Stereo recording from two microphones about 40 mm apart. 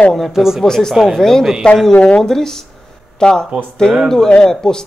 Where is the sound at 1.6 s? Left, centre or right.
Left.